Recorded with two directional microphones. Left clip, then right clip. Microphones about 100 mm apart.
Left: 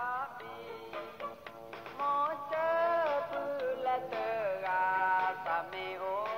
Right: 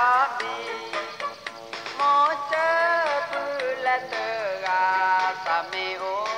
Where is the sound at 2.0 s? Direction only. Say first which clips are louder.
Right 12 dB; centre (ahead or behind).